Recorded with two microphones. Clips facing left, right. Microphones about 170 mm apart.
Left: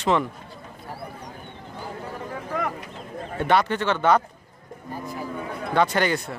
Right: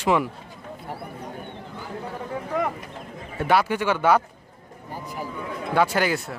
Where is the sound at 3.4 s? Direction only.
5° right (ahead or behind).